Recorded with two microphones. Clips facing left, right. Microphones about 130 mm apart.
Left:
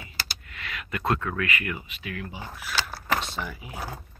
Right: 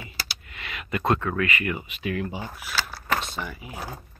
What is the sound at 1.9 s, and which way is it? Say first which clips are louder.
Speech: right 7 dB; 25° right (ahead or behind).